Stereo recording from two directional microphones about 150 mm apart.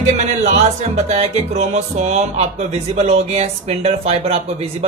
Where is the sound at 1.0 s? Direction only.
45° right (ahead or behind).